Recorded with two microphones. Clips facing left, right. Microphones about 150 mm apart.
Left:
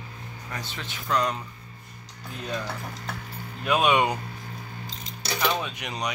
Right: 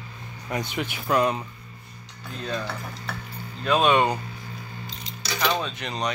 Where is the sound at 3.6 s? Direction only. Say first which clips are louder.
Right 2 dB; 10° left (ahead or behind).